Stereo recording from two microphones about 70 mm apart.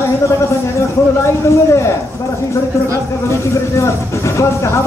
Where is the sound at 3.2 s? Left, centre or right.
Left.